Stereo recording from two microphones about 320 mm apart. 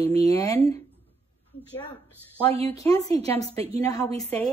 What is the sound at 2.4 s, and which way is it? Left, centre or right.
Speech, centre.